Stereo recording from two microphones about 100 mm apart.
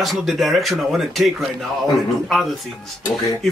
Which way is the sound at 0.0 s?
Centre (ahead or behind).